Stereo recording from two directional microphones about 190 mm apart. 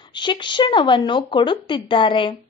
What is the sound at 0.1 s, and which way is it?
A woman's voice, 25° left (ahead or behind).